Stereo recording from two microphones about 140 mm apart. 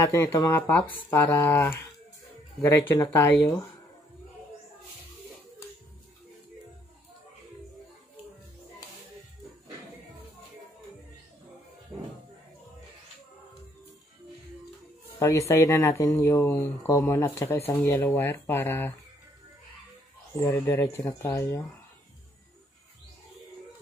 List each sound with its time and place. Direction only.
0.0 s speech: 25° left (ahead or behind)
15.1 s speech: 20° left (ahead or behind)
20.3 s speech: 15° left (ahead or behind)